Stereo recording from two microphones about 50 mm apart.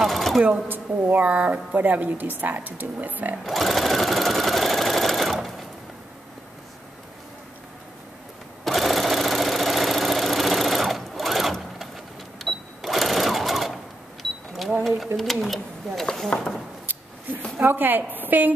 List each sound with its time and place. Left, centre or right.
0.0 s sewing machine: centre
0.7 s a woman's voice: right
3.4 s sewing machine: centre
8.6 s sewing machine: centre
14.8 s a sound: centre
17.6 s a woman's voice: right